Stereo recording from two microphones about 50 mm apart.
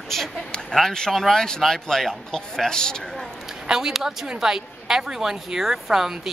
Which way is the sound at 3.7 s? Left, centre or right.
Centre.